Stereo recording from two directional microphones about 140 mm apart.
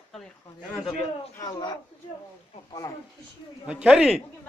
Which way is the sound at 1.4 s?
30° left (ahead or behind).